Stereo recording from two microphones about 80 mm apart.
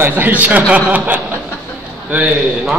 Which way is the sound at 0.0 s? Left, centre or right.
Right.